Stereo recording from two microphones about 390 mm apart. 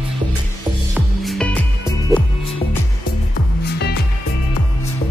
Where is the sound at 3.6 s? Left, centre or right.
Left.